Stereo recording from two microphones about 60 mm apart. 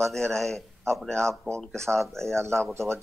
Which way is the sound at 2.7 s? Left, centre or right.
Right.